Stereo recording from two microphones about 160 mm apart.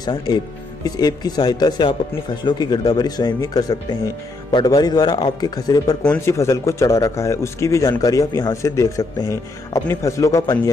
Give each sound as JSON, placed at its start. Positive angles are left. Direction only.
{"t": 0.0, "sound": "a man's voice", "side_deg": 25}